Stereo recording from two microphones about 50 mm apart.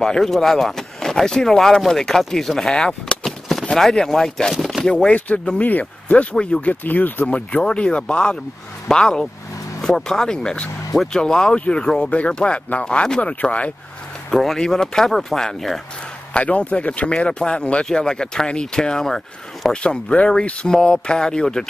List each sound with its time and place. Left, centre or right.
0.0 s speech: centre
3.3 s chop: centre
3.7 s speech: centre
4.8 s speech: left
6.3 s speech: left
6.7 s speech: left
7.2 s speech: left
12.1 s speech: left
14.3 s speech: centre
16.3 s speech: left
17.1 s speech: centre
19.8 s speech: left